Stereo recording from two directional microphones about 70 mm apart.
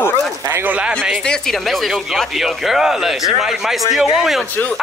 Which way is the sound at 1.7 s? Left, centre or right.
Centre.